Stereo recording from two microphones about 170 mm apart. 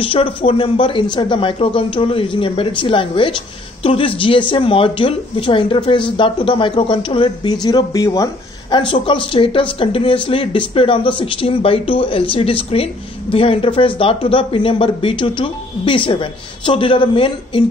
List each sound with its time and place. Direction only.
0.0 s speech: 30° left (ahead or behind)